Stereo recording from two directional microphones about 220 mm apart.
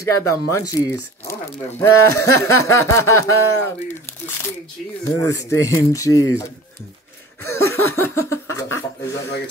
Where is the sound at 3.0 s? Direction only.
75° left (ahead or behind).